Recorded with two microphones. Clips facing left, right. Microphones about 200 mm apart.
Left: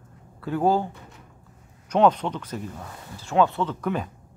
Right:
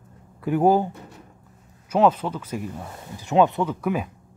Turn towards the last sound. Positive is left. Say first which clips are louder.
# right 2 dB
turn(degrees=-10)  # may be behind; listen again after turning